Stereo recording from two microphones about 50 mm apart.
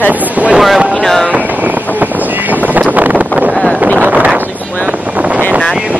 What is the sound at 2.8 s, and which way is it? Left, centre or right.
Wind noise, right.